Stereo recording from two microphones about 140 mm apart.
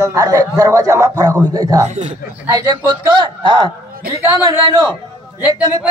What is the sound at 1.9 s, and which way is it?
Speech, 55° right (ahead or behind).